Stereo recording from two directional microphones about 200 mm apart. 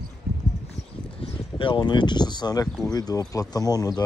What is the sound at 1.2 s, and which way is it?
Speech, 25° left (ahead or behind).